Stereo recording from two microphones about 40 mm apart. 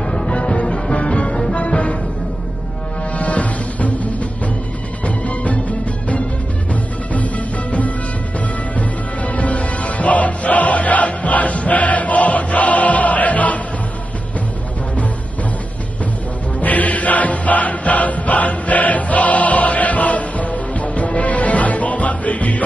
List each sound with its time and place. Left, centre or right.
0.0 s music: centre
0.3 s music: left
3.1 s music: left
16.5 s music: left